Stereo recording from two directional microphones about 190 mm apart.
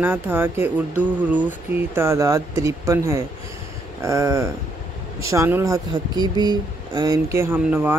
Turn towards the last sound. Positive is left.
turn(degrees=-10)  # may be behind; listen again after turning